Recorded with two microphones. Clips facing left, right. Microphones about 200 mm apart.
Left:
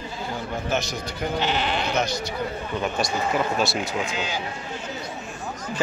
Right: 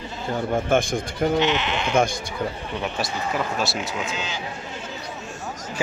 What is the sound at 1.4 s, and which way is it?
Speech, 35° left (ahead or behind).